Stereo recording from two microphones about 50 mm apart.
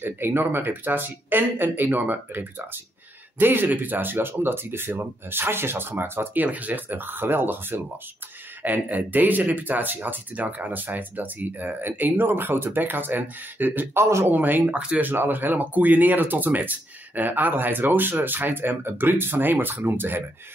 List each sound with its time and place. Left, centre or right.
0.0 s speech: right
6.3 s speech: right
8.6 s speech: right
13.9 s speech: right
14.3 s speech: right